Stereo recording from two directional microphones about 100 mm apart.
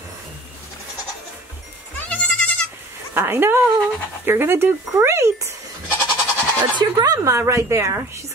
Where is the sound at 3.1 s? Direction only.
20° right (ahead or behind).